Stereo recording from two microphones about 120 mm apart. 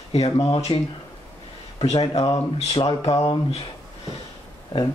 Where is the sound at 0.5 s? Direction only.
50° left (ahead or behind).